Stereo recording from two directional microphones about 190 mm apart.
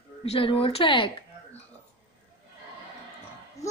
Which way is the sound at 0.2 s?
30° left (ahead or behind).